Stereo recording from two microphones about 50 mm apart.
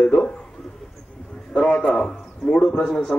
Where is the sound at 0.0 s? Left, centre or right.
Centre.